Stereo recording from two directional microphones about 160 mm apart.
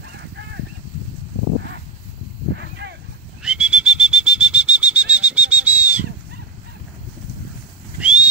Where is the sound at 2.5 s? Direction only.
90° right.